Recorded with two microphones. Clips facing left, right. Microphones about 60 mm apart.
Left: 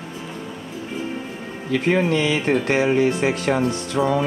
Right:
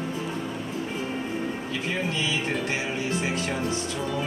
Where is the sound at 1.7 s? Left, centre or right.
Left.